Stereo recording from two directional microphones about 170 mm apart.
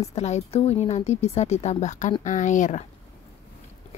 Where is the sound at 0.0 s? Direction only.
40° left (ahead or behind).